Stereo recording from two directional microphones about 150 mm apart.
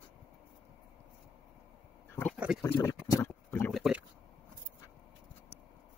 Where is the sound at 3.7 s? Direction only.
Centre (ahead or behind).